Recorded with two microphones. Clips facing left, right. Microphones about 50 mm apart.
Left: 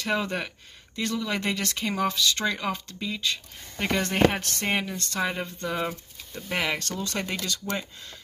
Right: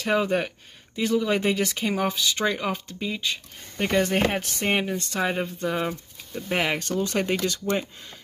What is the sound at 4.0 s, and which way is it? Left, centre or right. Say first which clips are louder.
Speech: even; centre.